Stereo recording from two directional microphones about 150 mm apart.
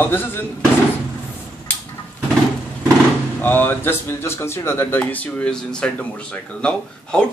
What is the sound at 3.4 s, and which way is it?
Speech, 15° left (ahead or behind).